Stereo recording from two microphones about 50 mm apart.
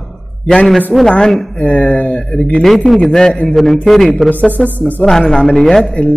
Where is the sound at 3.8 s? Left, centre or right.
Centre.